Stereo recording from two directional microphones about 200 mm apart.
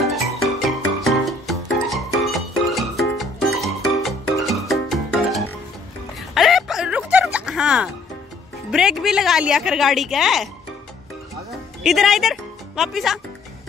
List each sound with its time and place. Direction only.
0.4 s music: centre (ahead or behind)
6.3 s a sound: centre (ahead or behind)
7.3 s music: 5° right (ahead or behind)
8.7 s a woman's voice: centre (ahead or behind)
11.8 s speech: centre (ahead or behind)